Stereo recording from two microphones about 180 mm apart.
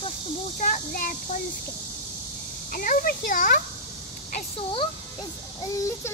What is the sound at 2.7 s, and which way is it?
Speech, 50° left (ahead or behind).